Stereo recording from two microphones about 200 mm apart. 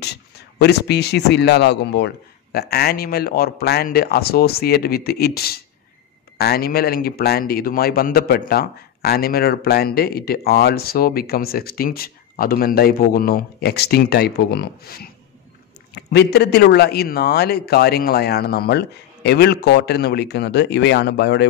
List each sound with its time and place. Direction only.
0.0 s a man's voice: 55° left (ahead or behind)